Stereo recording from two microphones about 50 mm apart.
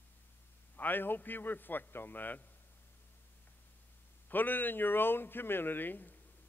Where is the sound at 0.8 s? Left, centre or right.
Left.